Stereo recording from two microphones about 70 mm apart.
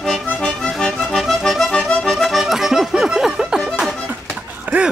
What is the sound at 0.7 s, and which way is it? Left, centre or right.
Accordion, centre.